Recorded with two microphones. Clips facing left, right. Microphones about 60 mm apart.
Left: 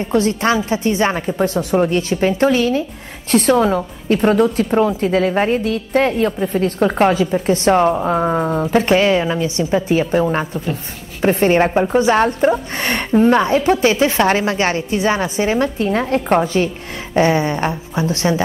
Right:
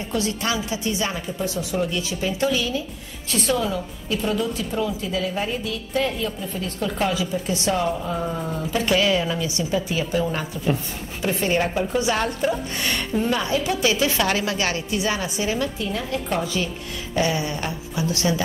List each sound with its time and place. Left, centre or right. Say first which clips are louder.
0.1 s a woman's voice: left 9 dB; left